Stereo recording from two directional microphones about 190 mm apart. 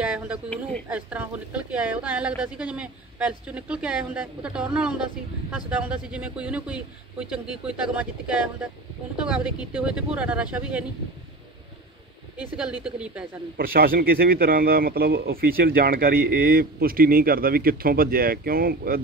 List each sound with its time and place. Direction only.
0.0 s a sound: 5° right (ahead or behind)
0.8 s speech: 5° right (ahead or behind)
12.4 s speech: 5° right (ahead or behind)
13.6 s speech: 50° right (ahead or behind)